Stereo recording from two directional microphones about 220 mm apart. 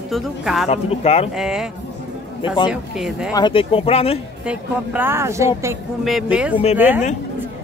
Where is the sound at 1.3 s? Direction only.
5° right (ahead or behind).